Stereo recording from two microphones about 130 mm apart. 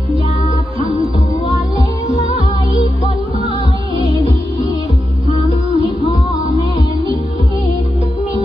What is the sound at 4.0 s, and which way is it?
Music, 30° left (ahead or behind).